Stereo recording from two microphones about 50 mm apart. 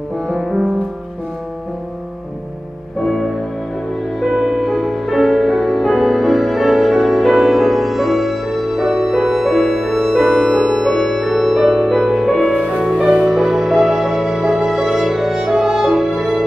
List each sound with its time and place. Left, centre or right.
0.3 s music: centre
3.0 s music: centre
12.5 s music: right; by 16.4 s centre